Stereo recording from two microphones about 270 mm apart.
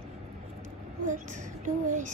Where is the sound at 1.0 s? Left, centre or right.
Right.